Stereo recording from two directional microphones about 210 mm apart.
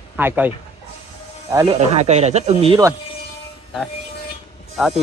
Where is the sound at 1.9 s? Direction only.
30° right (ahead or behind).